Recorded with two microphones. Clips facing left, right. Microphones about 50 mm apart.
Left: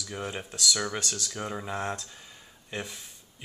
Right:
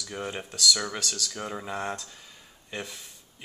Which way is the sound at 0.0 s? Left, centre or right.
Centre.